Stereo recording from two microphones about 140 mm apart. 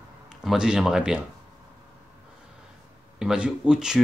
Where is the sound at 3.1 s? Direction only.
5° right (ahead or behind).